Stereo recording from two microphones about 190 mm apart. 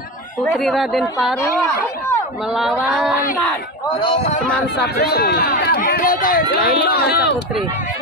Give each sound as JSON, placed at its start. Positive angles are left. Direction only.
{"t": 0.5, "sound": "speech", "side_deg": 0}
{"t": 2.5, "sound": "speech", "side_deg": 0}
{"t": 4.7, "sound": "speech", "side_deg": 55}